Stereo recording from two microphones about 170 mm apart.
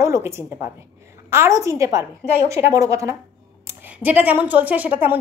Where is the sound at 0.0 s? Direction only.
15° right (ahead or behind).